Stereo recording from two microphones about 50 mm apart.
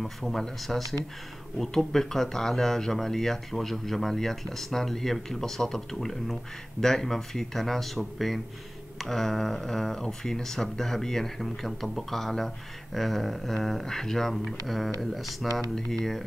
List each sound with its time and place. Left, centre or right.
0.0 s speech: centre